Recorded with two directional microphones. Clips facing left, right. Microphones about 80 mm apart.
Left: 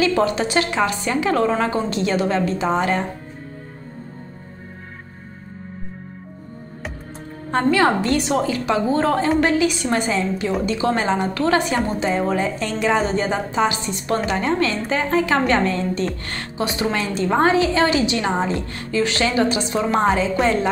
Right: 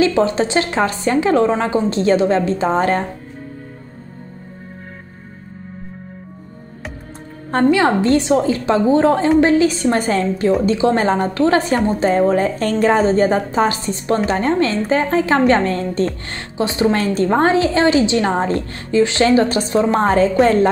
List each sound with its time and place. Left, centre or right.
0.0 s a woman's voice: right
7.7 s a woman's voice: right
10.6 s a woman's voice: right
16.2 s a woman's voice: right
16.9 s a woman's voice: right
19.2 s a woman's voice: right